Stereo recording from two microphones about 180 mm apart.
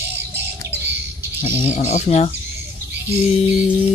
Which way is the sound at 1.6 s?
35° left (ahead or behind).